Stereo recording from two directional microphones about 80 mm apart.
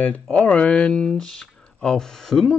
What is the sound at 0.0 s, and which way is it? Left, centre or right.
Speech, centre.